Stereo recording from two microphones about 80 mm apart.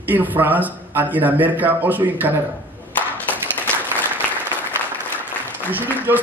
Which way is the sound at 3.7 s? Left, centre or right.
Centre.